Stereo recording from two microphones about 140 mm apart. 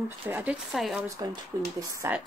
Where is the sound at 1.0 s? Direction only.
25° right (ahead or behind).